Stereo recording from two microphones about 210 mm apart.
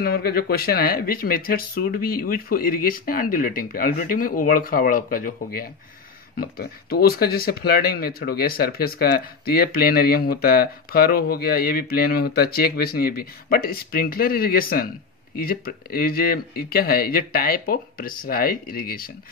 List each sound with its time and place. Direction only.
0.0 s speech: 45° left (ahead or behind)